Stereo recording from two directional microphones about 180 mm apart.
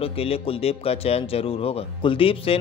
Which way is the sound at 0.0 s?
30° left (ahead or behind).